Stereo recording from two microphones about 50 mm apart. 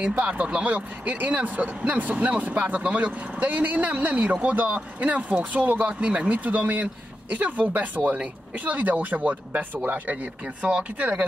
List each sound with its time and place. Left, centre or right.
0.0 s speech: right